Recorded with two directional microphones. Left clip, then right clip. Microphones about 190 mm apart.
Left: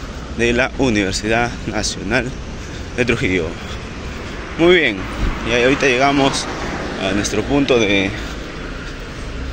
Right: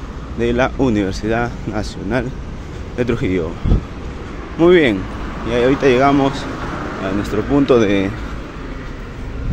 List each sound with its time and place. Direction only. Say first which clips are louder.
0.4 s speech: even; 15° right (ahead or behind)
4.6 s speech: right 1 dB; 25° right (ahead or behind)
7.5 s speech: right 2 dB; 35° right (ahead or behind)